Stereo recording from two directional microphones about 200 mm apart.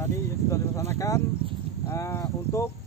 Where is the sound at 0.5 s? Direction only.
15° left (ahead or behind).